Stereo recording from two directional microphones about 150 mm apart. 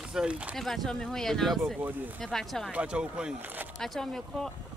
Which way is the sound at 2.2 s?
Centre (ahead or behind).